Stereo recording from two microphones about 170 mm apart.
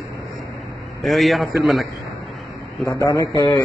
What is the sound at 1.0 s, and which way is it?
Speech, centre (ahead or behind).